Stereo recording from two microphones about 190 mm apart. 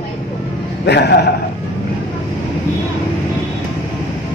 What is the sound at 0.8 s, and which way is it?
Speech, 60° left (ahead or behind).